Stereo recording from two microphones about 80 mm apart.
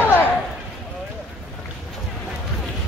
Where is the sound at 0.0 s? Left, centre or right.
Left.